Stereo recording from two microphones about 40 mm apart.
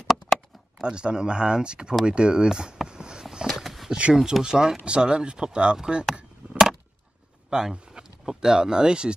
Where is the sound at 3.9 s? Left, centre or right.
Right.